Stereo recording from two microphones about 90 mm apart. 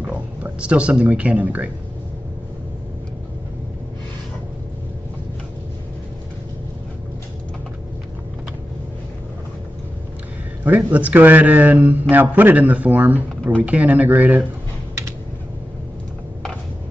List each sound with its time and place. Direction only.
0.0 s speech: 15° right (ahead or behind)
10.6 s a man's voice: 20° right (ahead or behind)